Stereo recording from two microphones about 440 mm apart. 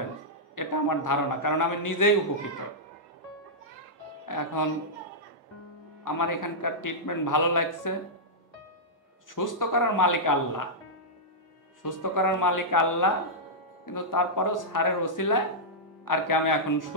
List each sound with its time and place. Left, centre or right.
0.6 s a man's voice: left
4.3 s speech: left
6.0 s a man's voice: left
9.3 s a man's voice: left
11.8 s a man's voice: left